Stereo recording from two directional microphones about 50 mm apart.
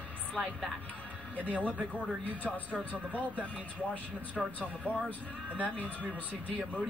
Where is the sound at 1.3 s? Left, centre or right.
Right.